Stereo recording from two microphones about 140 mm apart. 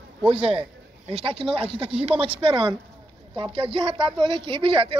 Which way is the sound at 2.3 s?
35° right (ahead or behind).